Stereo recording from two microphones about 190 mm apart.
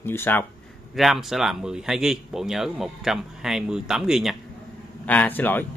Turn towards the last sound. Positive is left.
turn(degrees=10)  # may be behind; listen again after turning